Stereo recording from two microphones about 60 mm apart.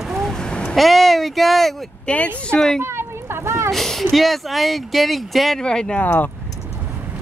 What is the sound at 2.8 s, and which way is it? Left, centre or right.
Speech, right.